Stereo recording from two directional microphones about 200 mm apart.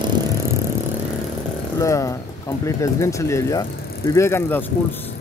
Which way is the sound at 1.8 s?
15° left (ahead or behind).